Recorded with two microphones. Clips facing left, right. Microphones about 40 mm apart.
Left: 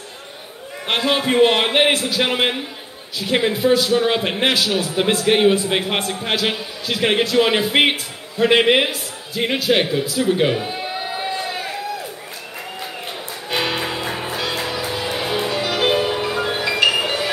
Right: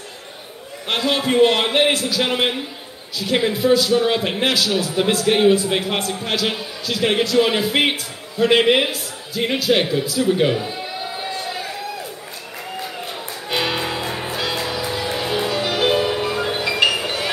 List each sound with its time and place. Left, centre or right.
0.8 s a man's voice: centre
10.6 s a sound: left
13.5 s music: centre